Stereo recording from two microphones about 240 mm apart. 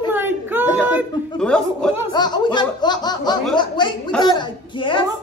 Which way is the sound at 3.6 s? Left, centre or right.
Centre.